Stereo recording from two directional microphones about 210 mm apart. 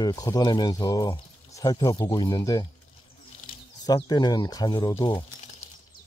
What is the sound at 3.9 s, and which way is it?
Speech, 20° left (ahead or behind).